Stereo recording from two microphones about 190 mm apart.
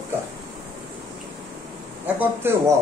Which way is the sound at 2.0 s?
10° right (ahead or behind).